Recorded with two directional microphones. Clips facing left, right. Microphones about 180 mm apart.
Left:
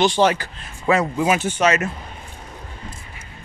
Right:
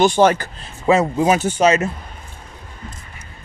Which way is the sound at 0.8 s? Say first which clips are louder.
Right 3 dB; 30° right (ahead or behind).